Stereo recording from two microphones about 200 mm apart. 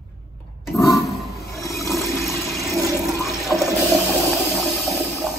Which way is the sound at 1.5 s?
15° left (ahead or behind).